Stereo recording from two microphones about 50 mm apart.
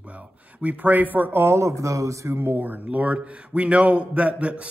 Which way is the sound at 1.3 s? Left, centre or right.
Right.